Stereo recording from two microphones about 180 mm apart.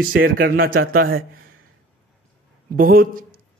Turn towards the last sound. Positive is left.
turn(degrees=-55)  # may be behind; listen again after turning